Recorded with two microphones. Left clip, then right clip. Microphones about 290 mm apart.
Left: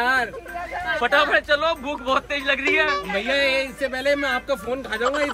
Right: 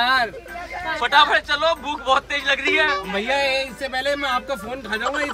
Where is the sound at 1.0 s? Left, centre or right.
Centre.